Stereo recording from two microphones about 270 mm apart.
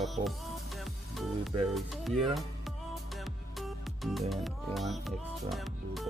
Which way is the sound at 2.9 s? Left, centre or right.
Centre.